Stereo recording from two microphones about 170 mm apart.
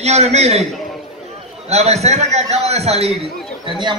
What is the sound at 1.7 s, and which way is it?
A man's voice, 40° right (ahead or behind).